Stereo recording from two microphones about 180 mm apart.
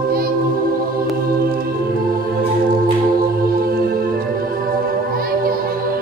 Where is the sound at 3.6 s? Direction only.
55° right (ahead or behind).